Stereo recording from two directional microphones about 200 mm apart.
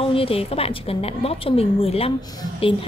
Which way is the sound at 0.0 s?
30° left (ahead or behind).